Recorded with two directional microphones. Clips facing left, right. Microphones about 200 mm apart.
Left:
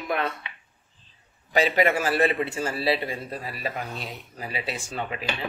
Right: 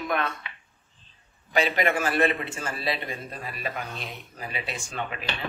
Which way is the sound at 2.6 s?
30° left (ahead or behind).